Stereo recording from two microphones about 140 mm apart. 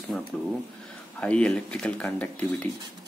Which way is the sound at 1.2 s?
5° left (ahead or behind).